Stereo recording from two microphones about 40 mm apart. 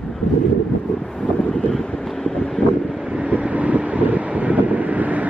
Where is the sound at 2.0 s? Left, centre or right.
Centre.